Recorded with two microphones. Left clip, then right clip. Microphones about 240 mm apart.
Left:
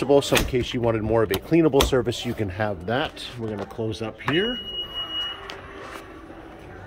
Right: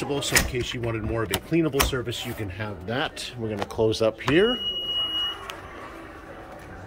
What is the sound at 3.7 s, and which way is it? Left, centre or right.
Speech, centre.